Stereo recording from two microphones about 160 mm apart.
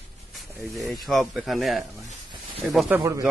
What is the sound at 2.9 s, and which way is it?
Speech, 10° right (ahead or behind).